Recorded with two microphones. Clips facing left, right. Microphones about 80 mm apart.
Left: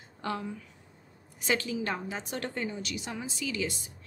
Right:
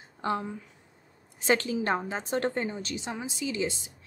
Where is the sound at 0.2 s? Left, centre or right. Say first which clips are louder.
Right 4 dB; right.